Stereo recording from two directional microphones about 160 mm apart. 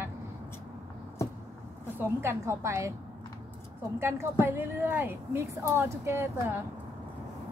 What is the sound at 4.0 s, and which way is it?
A woman's voice, 15° right (ahead or behind).